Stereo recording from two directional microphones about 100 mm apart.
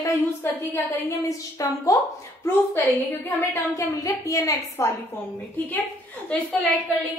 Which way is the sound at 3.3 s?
20° left (ahead or behind).